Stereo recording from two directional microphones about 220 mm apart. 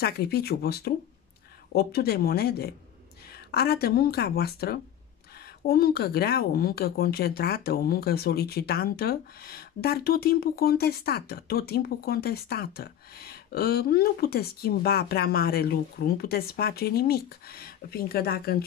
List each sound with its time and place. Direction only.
0.0 s speech: 45° left (ahead or behind)